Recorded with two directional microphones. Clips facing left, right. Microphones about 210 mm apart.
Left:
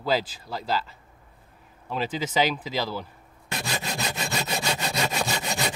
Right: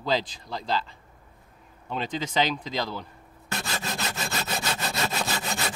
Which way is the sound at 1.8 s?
5° left (ahead or behind).